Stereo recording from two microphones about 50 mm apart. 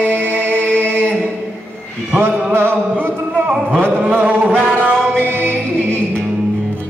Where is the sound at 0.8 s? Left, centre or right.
Right.